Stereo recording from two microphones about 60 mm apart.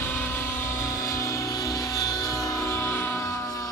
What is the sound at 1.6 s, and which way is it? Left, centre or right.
Music, left.